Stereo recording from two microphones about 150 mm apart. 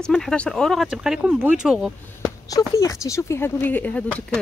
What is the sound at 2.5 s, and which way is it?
Speech, 25° left (ahead or behind).